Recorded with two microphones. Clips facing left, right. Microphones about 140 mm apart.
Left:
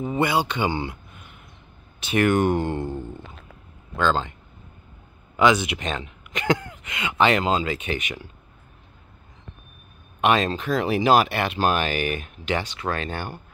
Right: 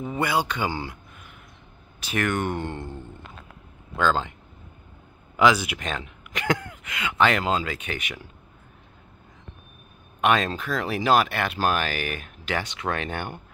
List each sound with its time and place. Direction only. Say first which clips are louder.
0.0 s speech: left 3 dB; 5° left (ahead or behind)
2.0 s speech: left 6 dB; 10° left (ahead or behind)
3.9 s speech: left 1 dB; 10° right (ahead or behind)
5.4 s speech: left 1 dB; 5° right (ahead or behind)
10.2 s speech: left 2 dB; centre (ahead or behind)
13.0 s speech: even; 20° right (ahead or behind)